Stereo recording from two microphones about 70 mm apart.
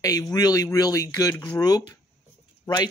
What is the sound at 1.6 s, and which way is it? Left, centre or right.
Speech, left.